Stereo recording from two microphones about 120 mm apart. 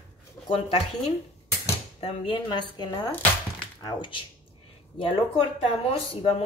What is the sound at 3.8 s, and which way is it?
Speech, 45° left (ahead or behind).